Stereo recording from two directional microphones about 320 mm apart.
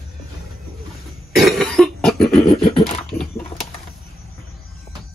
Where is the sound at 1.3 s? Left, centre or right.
Centre.